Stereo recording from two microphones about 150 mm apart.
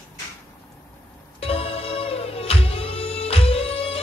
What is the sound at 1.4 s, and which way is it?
Music, 40° left (ahead or behind).